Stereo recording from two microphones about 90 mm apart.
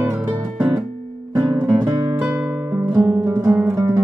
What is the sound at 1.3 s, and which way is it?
Music, 50° right (ahead or behind).